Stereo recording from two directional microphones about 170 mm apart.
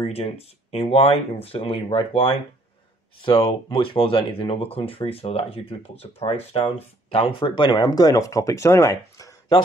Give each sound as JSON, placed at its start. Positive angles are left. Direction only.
{"t": 0.0, "sound": "speech", "side_deg": 35}